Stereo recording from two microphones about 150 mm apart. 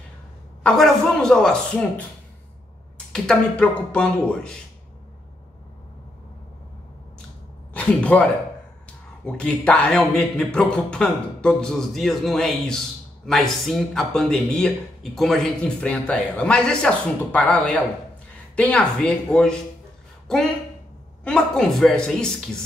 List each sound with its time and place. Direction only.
0.7 s a man's voice: 5° left (ahead or behind)
3.1 s speech: 5° left (ahead or behind)
7.7 s a man's voice: 10° left (ahead or behind)